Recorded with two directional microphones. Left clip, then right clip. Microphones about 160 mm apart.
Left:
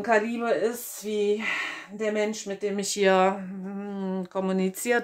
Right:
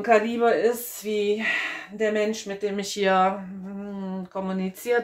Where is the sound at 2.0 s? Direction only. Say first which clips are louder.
Right 3 dB; 15° left (ahead or behind).